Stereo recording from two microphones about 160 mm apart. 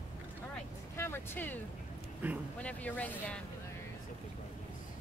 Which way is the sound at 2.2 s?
10° right (ahead or behind).